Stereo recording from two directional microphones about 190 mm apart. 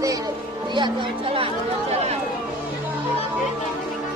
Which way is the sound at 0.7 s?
25° right (ahead or behind).